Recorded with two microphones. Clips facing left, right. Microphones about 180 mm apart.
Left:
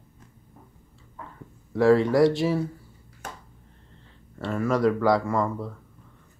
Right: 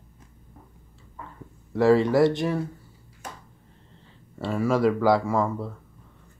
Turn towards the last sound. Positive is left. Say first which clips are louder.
# right 1 dB
turn(degrees=-5)  # may be behind; listen again after turning